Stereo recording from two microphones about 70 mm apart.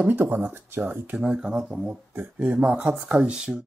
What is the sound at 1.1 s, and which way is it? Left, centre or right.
Speech, centre.